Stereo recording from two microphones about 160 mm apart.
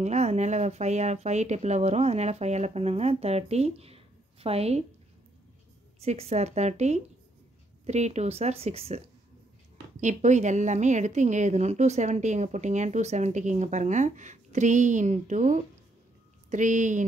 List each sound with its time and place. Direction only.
0.0 s a woman's voice: 45° right (ahead or behind)
5.9 s a woman's voice: 40° right (ahead or behind)